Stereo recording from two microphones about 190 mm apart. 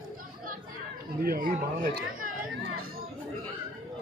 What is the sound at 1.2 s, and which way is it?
Speech, 50° right (ahead or behind).